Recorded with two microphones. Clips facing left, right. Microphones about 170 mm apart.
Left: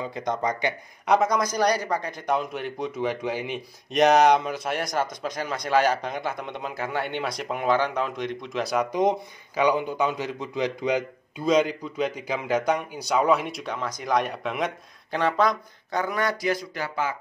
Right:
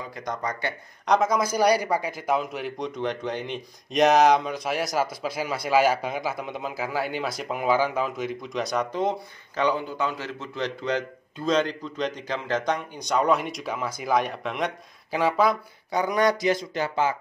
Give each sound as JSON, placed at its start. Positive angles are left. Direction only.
{"t": 0.1, "sound": "speech", "side_deg": 20}
{"t": 1.0, "sound": "a man's voice", "side_deg": 0}
{"t": 8.9, "sound": "a man's voice", "side_deg": 15}